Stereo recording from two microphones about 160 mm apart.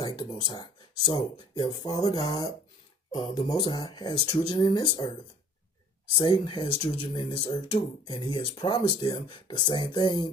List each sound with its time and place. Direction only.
0.0 s speech: 30° left (ahead or behind)
6.1 s speech: 30° left (ahead or behind)